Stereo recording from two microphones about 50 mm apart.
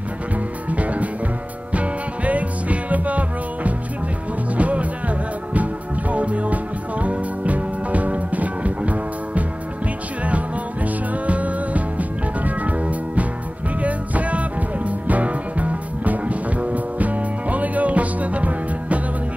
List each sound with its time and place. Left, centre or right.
0.7 s music: right